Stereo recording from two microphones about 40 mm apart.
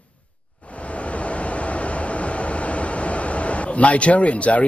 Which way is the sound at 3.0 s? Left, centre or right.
Left.